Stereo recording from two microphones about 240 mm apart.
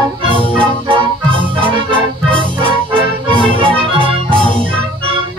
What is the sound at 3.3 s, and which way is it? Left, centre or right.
Music, right.